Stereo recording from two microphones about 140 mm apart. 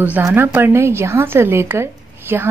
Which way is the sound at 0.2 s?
15° right (ahead or behind).